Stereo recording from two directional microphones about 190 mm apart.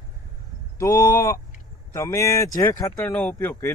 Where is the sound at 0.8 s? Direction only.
15° left (ahead or behind).